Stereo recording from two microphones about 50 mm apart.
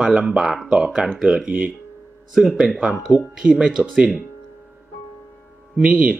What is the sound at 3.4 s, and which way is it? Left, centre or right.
Speech, centre.